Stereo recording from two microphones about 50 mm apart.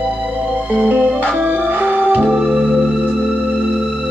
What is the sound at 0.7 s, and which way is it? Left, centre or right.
Music, right.